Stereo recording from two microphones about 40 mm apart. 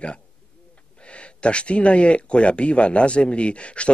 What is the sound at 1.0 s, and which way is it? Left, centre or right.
Speech, left.